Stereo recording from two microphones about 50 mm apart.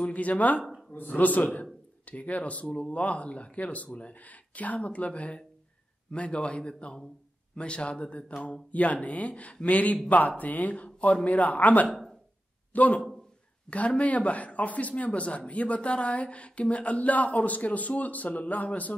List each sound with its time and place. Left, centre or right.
0.0 s speech: left